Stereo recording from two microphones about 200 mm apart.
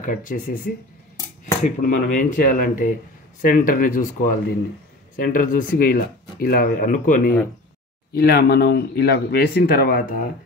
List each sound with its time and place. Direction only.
0.0 s speech: 40° left (ahead or behind)
1.8 s speech: 45° left (ahead or behind)